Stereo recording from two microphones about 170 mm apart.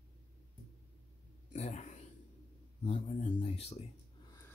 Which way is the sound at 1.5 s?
40° left (ahead or behind).